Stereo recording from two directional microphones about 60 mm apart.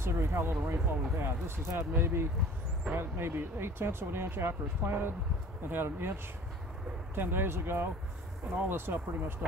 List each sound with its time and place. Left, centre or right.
0.0 s speech: right
7.2 s speech: right